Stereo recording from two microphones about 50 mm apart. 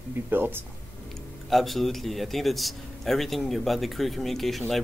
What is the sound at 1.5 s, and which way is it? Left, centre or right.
Speech, centre.